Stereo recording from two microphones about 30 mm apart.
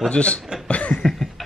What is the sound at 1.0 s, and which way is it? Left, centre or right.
Cough, centre.